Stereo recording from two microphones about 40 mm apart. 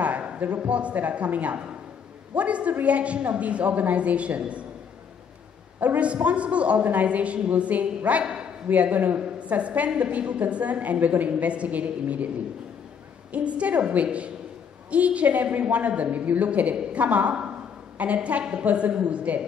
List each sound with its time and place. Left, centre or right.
0.6 s a woman's voice: right
5.8 s a woman's voice: right
6.8 s a woman's voice: right
13.3 s a woman's voice: right